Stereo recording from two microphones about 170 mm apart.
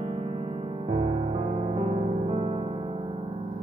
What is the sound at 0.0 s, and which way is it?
Music, 35° right (ahead or behind).